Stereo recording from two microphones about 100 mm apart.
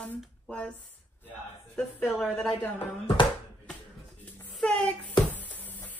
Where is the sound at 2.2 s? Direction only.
Centre (ahead or behind).